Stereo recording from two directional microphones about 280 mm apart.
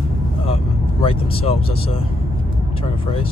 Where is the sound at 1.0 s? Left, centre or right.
Centre.